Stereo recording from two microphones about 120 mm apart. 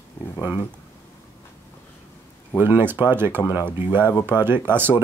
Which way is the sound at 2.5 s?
15° right (ahead or behind).